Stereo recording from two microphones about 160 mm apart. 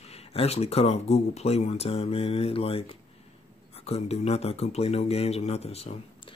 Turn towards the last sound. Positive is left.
turn(degrees=40)  # may be behind; listen again after turning